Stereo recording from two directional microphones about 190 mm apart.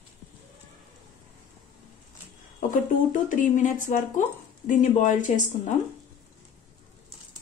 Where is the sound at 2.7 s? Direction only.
45° left (ahead or behind).